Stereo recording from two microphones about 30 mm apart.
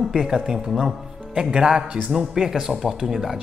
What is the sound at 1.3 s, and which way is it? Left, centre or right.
Speech, right.